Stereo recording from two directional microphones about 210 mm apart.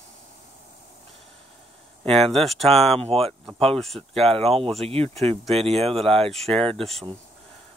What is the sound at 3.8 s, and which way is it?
Speech, centre (ahead or behind).